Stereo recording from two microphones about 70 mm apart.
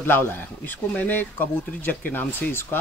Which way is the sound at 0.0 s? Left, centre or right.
Left.